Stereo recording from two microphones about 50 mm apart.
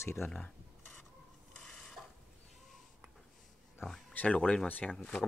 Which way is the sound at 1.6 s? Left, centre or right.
Centre.